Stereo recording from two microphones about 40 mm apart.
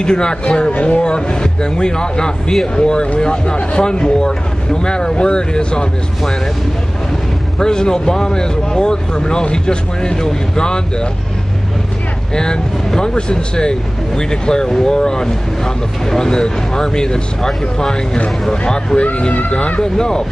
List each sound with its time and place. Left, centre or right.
0.0 s speech: centre
0.7 s speech: left
7.5 s speech: centre
12.4 s speech: centre